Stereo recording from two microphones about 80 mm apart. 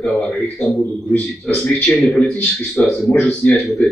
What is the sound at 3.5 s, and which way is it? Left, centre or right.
Speech, centre.